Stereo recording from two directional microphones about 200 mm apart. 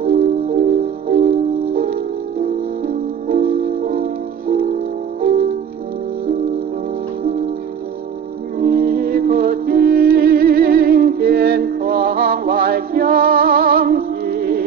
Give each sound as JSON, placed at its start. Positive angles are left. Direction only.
{"t": 0.0, "sound": "music", "side_deg": -45}
{"t": 8.5, "sound": "music", "side_deg": -45}